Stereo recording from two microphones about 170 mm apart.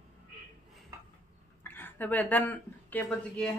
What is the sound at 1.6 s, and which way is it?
Speech, 10° left (ahead or behind).